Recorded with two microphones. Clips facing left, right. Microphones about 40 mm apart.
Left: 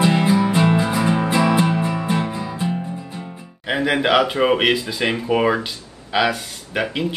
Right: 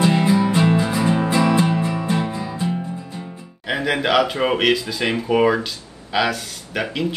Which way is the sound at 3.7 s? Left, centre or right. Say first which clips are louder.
Left 2 dB; centre.